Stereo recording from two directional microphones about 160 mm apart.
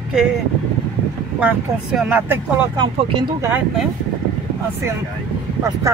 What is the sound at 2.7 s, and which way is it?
Speech, 30° right (ahead or behind).